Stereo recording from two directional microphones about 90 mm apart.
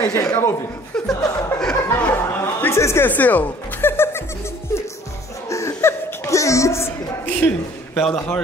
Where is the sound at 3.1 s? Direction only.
20° left (ahead or behind).